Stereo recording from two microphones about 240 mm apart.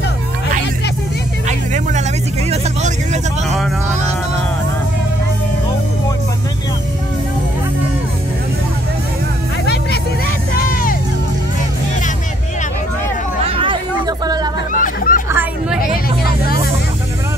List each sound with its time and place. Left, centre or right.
1.7 s music: right
2.5 s vehicle: right
3.4 s vehicle: centre
10.5 s music: left
13.5 s hubbub: right
14.7 s hubbub: left
15.2 s chatter: centre